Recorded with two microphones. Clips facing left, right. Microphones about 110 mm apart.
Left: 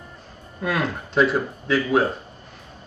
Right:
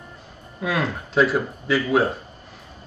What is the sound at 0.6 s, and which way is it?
Speech, centre (ahead or behind).